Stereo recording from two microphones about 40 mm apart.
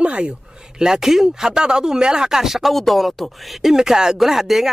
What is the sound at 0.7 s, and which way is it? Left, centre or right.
Speech, centre.